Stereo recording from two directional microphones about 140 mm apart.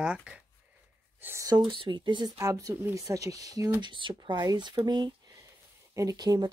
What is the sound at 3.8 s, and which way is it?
Speech, 35° right (ahead or behind).